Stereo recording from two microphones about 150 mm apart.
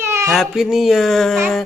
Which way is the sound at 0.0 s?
15° right (ahead or behind).